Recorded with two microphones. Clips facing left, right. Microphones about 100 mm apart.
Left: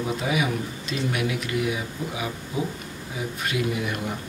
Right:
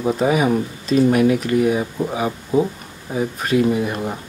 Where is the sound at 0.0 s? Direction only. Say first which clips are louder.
Right 8 dB; 40° right (ahead or behind).